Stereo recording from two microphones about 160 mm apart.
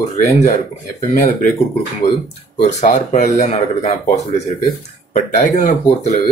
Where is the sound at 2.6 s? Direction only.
50° left (ahead or behind).